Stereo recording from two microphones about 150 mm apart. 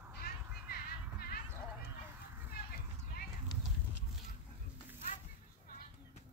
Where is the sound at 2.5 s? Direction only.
85° left.